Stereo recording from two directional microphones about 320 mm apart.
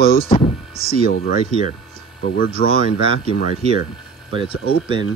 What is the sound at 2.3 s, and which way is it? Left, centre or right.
Speech, left.